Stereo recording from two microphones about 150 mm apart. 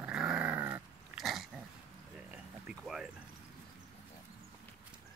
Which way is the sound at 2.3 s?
5° right (ahead or behind).